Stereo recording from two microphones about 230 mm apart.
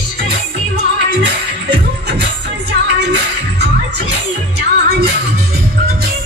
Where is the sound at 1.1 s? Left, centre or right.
Right.